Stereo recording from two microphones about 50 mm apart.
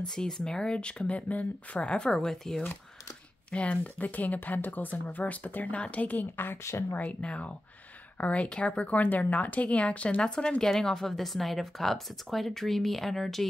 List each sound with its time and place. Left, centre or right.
0.1 s speech: centre
2.0 s speech: centre
3.5 s speech: left
7.0 s speech: left
8.9 s a woman's voice: left; by 13.5 s centre